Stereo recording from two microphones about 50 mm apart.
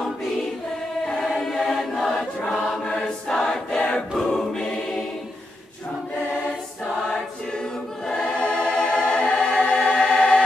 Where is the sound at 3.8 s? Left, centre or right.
Left; by 5.3 s centre.